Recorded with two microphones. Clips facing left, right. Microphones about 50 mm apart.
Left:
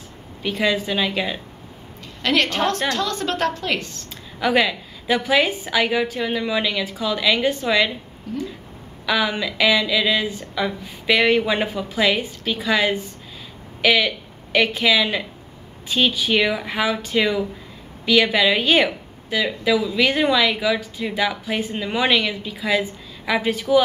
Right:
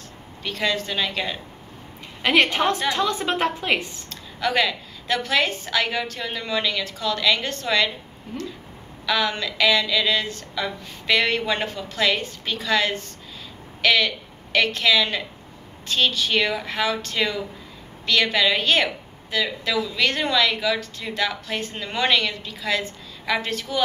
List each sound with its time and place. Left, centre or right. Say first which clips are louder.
0.4 s speech: left 4 dB; centre
2.2 s a woman's voice: right 1 dB; centre
4.1 s speech: left 4 dB; centre
8.3 s a woman's voice: left 5 dB; centre
9.0 s speech: left 2 dB; centre